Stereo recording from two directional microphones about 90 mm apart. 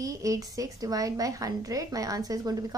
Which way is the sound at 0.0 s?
40° right (ahead or behind).